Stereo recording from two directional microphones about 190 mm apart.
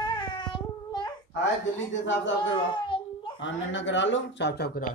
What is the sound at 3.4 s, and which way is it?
Speech, 75° left (ahead or behind).